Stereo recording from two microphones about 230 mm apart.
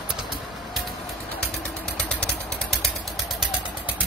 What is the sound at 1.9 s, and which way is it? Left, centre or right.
Mechanisms, centre.